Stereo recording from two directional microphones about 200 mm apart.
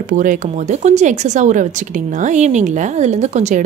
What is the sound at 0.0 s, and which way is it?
Speech, 40° right (ahead or behind).